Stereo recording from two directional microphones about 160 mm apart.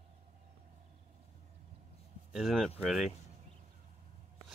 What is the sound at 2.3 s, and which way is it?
Speech, centre (ahead or behind).